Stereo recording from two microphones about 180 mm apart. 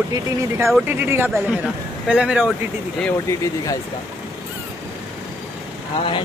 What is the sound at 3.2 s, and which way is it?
Speech, 20° left (ahead or behind).